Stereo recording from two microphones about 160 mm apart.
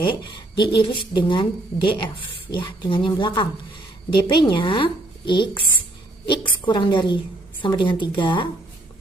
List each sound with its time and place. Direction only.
0.0 s speech: 30° left (ahead or behind)
6.6 s a woman's voice: 30° left (ahead or behind)